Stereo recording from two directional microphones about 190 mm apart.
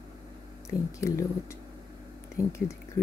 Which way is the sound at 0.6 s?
15° left (ahead or behind).